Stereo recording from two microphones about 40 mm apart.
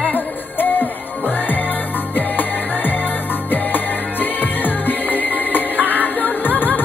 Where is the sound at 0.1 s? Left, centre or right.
Left.